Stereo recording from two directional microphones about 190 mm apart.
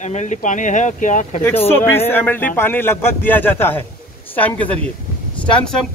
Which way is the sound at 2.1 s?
10° left (ahead or behind).